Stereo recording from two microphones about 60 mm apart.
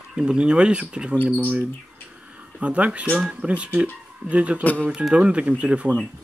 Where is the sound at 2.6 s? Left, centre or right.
Right.